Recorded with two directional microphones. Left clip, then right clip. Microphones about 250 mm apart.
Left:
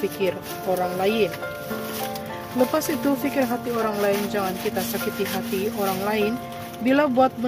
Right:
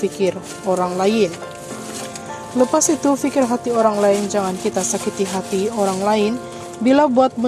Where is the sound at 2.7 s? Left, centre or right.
Centre.